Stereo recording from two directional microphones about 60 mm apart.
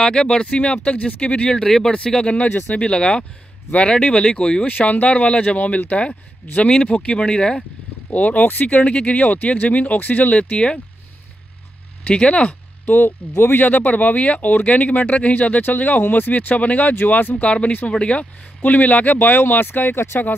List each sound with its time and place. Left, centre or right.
0.0 s speech: centre
4.6 s speech: left
8.1 s speech: left
12.1 s speech: centre
12.8 s speech: left
17.4 s speech: left